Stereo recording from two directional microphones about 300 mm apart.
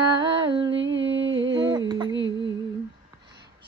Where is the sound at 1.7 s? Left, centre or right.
Centre.